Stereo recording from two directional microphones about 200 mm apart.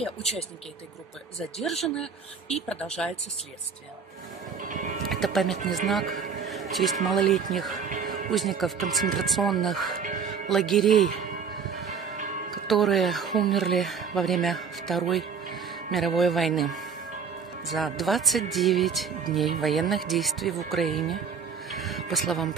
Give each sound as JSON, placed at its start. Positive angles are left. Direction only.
{"t": 1.6, "sound": "speech", "side_deg": 0}
{"t": 5.1, "sound": "speech", "side_deg": 0}
{"t": 7.9, "sound": "music", "side_deg": -40}
{"t": 8.3, "sound": "speech", "side_deg": 0}
{"t": 12.6, "sound": "speech", "side_deg": 0}
{"t": 21.6, "sound": "music", "side_deg": 0}